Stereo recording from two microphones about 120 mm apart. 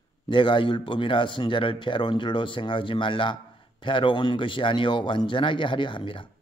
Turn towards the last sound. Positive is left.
turn(degrees=45)  # may be behind; listen again after turning